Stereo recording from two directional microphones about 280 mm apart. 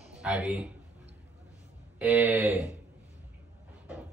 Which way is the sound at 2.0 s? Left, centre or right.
Centre.